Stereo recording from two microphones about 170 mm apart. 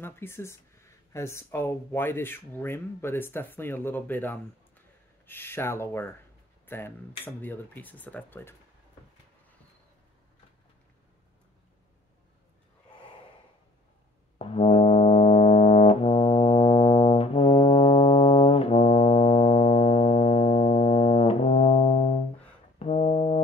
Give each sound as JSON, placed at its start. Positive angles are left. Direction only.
{"t": 0.0, "sound": "speech", "side_deg": 15}
{"t": 14.4, "sound": "brass instrument", "side_deg": 35}